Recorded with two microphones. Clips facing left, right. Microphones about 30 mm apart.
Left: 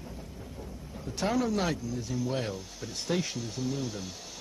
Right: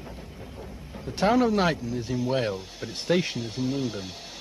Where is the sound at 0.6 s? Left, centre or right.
Right.